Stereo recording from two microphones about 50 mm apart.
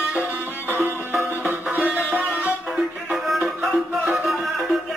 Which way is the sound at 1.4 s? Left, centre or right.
Right.